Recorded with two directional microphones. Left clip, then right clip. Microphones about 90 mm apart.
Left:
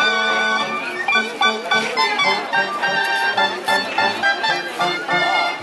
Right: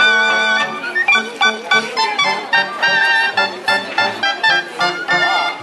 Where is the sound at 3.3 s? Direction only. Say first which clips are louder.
Right 2 dB; 15° right (ahead or behind).